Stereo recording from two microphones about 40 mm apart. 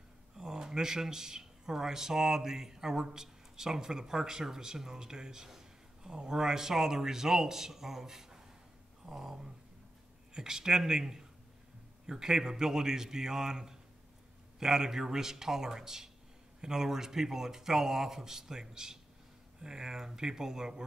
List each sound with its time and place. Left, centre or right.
0.4 s speech: centre